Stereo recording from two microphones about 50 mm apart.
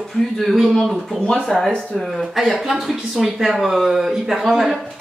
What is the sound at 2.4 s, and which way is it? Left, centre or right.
Speech, centre.